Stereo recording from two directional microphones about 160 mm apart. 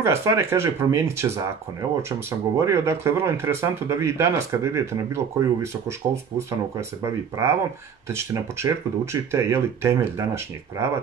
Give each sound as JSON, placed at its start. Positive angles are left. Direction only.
{"t": 0.0, "sound": "speech", "side_deg": -15}